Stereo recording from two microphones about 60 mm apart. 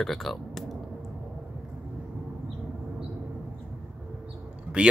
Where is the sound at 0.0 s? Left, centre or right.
Centre.